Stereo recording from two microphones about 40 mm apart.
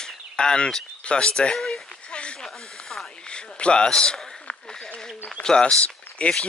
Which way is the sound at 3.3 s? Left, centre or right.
Left.